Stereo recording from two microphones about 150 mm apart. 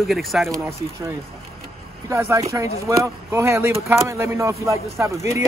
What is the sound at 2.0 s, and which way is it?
Speech, 20° right (ahead or behind).